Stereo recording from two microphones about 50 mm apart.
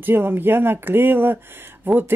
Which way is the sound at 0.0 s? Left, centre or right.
Right.